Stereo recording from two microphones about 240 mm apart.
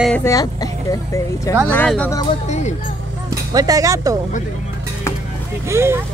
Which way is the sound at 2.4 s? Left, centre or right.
Left.